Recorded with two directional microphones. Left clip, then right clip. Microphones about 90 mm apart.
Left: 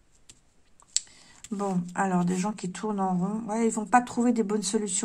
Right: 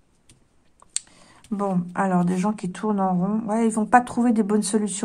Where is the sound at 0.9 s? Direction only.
30° right (ahead or behind).